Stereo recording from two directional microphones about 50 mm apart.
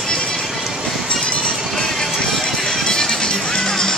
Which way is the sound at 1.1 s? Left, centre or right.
Centre.